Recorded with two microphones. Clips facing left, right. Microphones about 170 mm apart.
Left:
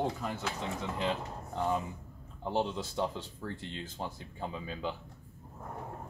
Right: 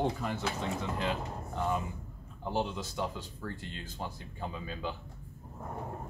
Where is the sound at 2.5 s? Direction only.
25° left (ahead or behind).